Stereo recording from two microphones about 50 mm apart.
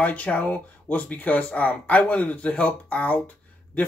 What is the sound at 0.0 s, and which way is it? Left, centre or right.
Speech, left.